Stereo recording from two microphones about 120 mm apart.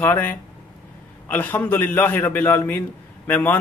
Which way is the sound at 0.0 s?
15° left (ahead or behind).